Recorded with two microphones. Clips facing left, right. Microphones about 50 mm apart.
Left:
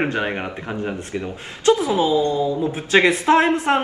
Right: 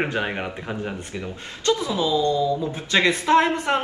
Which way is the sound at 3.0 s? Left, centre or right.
Centre.